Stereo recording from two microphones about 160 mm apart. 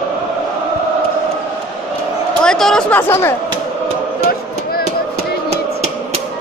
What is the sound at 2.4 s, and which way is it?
Speech, 5° left (ahead or behind).